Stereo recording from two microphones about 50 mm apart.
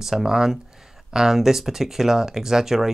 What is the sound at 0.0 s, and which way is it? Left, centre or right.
Speech, centre.